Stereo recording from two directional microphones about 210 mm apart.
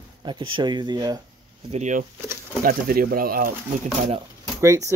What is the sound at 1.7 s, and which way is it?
Speech, 35° right (ahead or behind).